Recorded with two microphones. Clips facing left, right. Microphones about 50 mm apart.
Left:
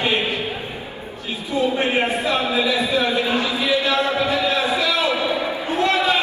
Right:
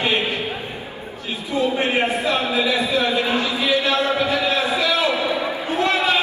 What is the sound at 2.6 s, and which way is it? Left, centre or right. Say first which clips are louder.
Speech: even; right.